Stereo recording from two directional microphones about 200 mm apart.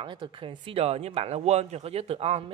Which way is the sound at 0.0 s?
25° right (ahead or behind).